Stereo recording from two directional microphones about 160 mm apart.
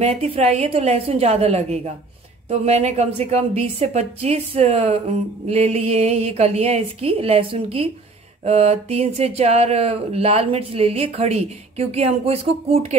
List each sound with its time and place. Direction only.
0.0 s a woman's voice: 40° right (ahead or behind)